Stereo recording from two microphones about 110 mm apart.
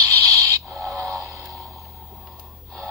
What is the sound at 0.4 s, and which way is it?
Owl, 30° right (ahead or behind).